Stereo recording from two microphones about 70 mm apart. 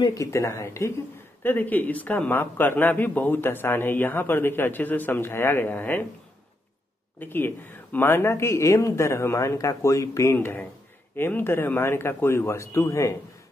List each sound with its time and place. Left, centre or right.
0.2 s speech: left
1.4 s a man's voice: left
7.2 s speech: left
10.3 s speech: left